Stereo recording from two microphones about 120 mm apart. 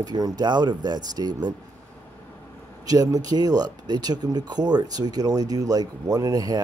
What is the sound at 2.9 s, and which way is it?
Speech, 30° right (ahead or behind).